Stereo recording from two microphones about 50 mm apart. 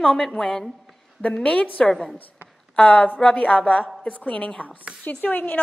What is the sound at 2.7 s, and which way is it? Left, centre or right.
A woman's voice, left.